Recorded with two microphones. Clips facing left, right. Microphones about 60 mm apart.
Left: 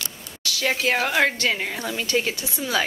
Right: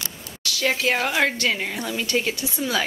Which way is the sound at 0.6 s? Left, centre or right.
Centre.